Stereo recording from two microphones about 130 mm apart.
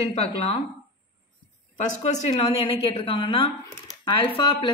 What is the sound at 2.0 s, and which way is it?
A woman's voice, 60° left (ahead or behind).